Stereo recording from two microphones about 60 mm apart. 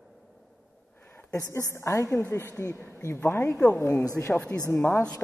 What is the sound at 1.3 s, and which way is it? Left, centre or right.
A woman's voice, left.